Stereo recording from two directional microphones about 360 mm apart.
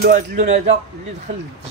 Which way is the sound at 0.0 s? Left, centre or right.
Right.